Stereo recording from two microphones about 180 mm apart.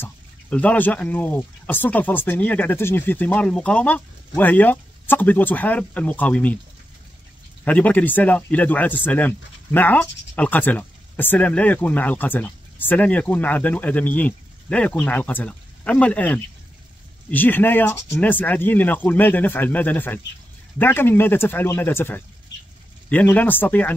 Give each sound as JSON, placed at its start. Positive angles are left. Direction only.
{"t": 0.0, "sound": "speech", "side_deg": 10}
{"t": 7.6, "sound": "speech", "side_deg": 10}